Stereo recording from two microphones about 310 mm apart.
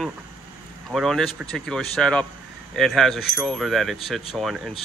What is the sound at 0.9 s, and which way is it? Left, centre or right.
Speech, centre.